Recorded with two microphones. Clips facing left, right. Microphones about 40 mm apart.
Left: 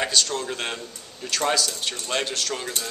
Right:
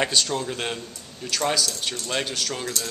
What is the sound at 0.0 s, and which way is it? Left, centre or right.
Speech, centre.